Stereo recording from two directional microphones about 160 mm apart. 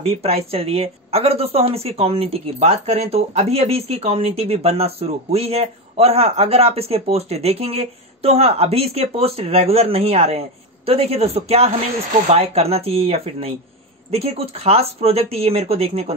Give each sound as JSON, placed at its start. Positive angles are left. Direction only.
{"t": 0.0, "sound": "speech", "side_deg": -40}